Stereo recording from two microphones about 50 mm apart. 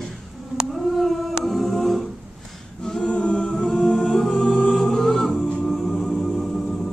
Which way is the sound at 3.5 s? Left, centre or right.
Centre.